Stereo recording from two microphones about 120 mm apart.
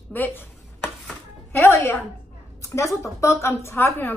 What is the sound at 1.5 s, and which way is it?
A woman's voice, 20° left (ahead or behind).